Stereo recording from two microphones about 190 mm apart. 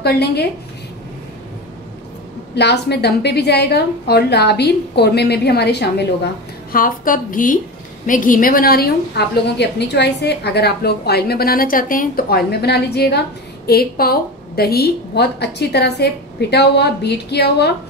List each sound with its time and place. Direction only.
0.0 s a woman's voice: 60° left (ahead or behind)
2.5 s a woman's voice: 60° left (ahead or behind)
6.7 s a woman's voice: 45° left (ahead or behind)